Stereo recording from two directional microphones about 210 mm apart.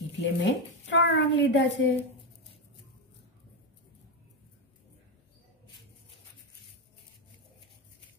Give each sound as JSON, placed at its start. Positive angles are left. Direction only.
{"t": 0.2, "sound": "a woman's voice", "side_deg": 55}